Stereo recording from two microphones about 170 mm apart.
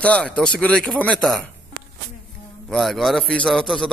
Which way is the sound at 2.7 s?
Centre (ahead or behind).